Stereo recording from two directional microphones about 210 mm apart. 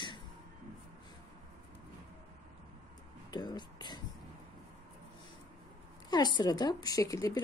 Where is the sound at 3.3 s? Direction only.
20° left (ahead or behind).